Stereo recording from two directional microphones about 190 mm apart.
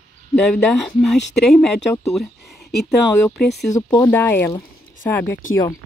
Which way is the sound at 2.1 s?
Centre (ahead or behind).